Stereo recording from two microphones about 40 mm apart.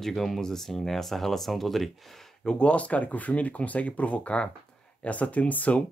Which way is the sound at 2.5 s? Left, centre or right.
Left.